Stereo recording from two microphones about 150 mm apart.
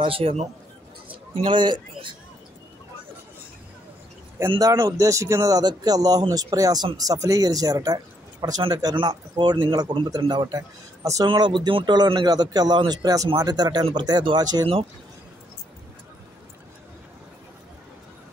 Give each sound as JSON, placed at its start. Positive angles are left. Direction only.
{"t": 0.0, "sound": "a man's voice", "side_deg": -40}
{"t": 4.5, "sound": "a man's voice", "side_deg": -25}